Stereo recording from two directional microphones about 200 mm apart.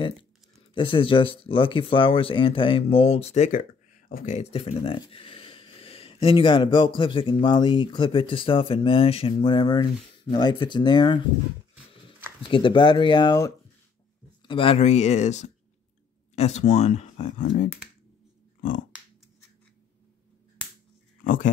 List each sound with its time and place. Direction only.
0.7 s speech: 25° left (ahead or behind)
12.4 s speech: 25° left (ahead or behind)
21.2 s a sound: 40° left (ahead or behind)